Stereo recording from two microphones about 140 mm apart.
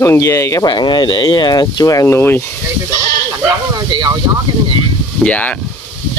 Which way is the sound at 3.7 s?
30° right (ahead or behind).